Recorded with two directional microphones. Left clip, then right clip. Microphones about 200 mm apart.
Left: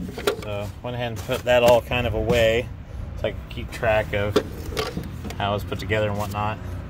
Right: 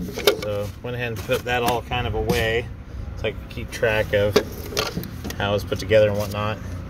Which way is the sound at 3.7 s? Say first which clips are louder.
Right 2 dB; 5° left (ahead or behind).